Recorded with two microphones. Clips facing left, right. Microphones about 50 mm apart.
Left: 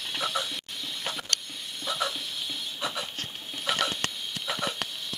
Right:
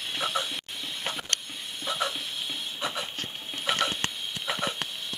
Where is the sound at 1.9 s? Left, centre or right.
Centre.